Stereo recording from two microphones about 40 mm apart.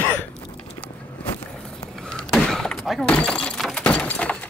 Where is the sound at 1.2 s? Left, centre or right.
Left.